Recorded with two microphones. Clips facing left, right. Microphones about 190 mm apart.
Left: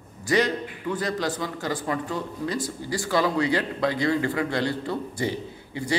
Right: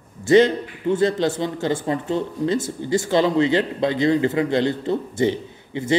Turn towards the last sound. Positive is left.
turn(degrees=-25)  # may be behind; listen again after turning